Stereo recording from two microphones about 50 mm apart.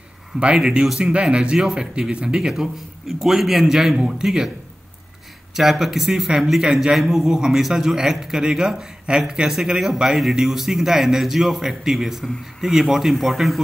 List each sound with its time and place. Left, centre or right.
0.4 s speech: centre
5.6 s speech: centre